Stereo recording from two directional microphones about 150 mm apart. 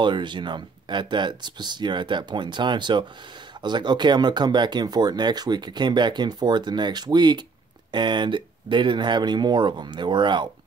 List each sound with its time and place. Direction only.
0.0 s speech: 30° right (ahead or behind)